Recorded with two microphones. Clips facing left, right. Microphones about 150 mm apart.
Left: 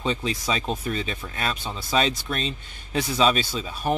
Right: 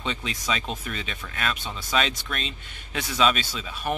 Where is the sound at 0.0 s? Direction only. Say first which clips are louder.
Left 5 dB; 35° left (ahead or behind).